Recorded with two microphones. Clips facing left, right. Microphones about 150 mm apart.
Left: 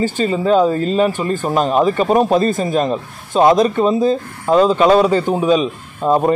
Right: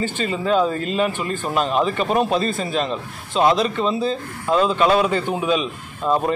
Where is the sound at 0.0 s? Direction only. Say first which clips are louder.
Left 6 dB; 35° left (ahead or behind).